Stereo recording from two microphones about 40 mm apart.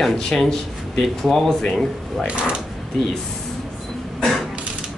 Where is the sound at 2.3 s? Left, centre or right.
Right.